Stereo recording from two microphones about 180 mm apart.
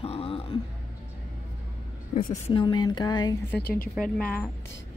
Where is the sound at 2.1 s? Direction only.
45° left (ahead or behind).